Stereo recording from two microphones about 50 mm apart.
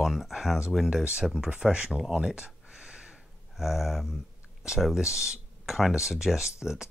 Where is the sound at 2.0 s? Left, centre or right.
Centre.